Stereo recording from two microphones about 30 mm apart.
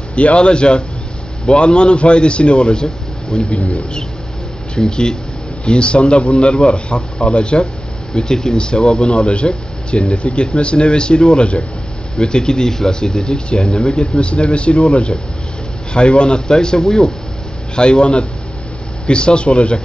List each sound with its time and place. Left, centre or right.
0.1 s speech: left
4.7 s a man's voice: left
13.2 s a man's voice: left